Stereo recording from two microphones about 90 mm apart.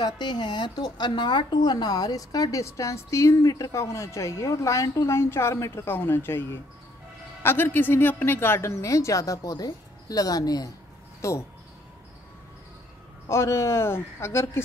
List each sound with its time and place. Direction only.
0.0 s a woman's voice: 55° left (ahead or behind); by 6.4 s 25° left (ahead or behind)
7.4 s a woman's voice: 25° left (ahead or behind); by 10.7 s 45° left (ahead or behind)
11.1 s speech: 35° left (ahead or behind)
13.3 s a man's voice: 35° left (ahead or behind)